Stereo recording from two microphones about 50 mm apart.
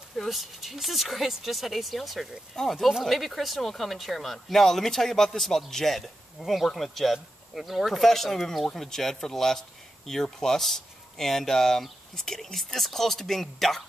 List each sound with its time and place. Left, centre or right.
0.2 s speech: centre